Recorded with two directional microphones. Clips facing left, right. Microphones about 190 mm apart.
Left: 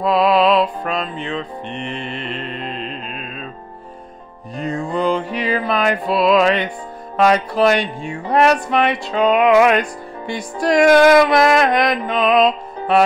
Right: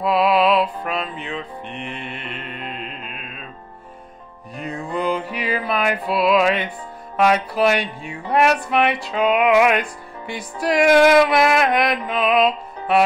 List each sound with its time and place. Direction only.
0.0 s music: 10° right (ahead or behind)
4.8 s music: 30° left (ahead or behind)
5.1 s music: 5° right (ahead or behind)